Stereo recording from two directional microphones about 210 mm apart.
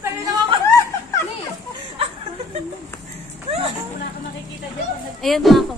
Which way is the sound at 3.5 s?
30° right (ahead or behind).